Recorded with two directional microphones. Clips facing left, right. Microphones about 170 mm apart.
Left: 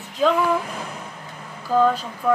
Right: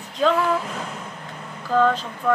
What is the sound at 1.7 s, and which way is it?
Speech, 10° left (ahead or behind).